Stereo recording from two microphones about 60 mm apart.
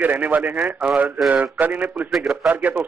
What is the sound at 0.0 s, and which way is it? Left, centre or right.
Mantra, right.